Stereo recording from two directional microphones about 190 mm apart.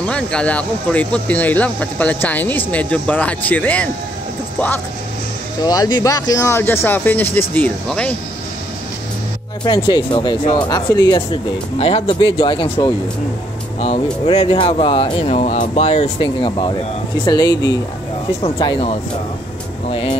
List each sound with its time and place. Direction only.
0.0 s speech: 5° left (ahead or behind)
5.6 s speech: 20° left (ahead or behind)
9.7 s speech: 25° left (ahead or behind)